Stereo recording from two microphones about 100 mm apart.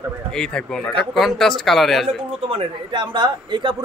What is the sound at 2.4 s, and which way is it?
A man's voice, 70° right (ahead or behind).